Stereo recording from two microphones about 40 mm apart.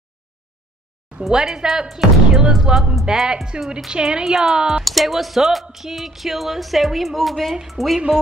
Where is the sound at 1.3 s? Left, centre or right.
Centre.